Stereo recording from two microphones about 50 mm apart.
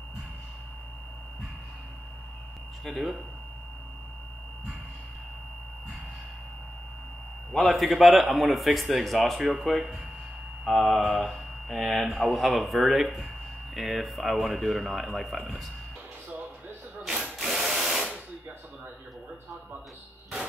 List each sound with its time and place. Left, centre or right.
2.8 s speech: centre
7.5 s speech: centre
10.7 s speech: centre
11.1 s speech: centre
17.1 s ratchet: centre
17.6 s drill: centre